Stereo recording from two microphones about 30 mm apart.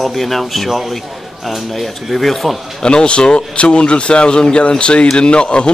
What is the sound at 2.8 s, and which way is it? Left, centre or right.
Speech, left.